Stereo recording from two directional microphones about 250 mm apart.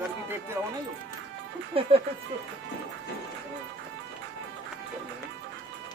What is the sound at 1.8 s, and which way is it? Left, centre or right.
Speech, right.